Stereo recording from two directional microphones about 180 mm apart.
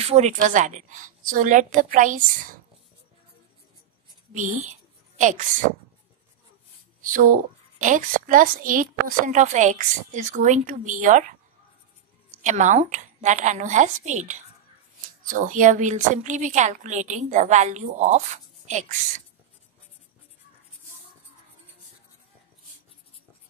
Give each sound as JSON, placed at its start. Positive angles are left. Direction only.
{"t": 0.0, "sound": "a woman's voice", "side_deg": -35}
{"t": 4.3, "sound": "whispering", "side_deg": -45}
{"t": 7.0, "sound": "a woman's voice", "side_deg": -50}